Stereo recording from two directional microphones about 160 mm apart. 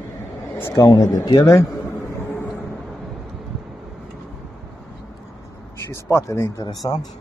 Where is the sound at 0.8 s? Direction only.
20° left (ahead or behind).